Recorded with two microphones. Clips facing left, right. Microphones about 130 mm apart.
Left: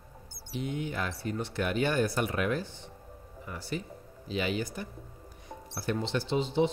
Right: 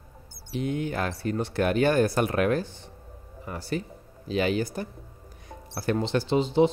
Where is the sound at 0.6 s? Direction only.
65° right (ahead or behind).